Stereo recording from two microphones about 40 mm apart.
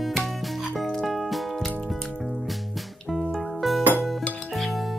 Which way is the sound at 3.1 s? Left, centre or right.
Centre.